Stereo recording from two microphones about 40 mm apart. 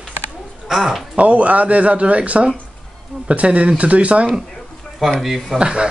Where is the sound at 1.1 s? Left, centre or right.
Right.